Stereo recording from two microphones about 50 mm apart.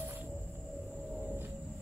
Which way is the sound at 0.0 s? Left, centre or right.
Right.